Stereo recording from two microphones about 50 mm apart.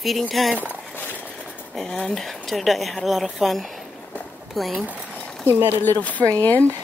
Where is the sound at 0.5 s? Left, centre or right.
Left.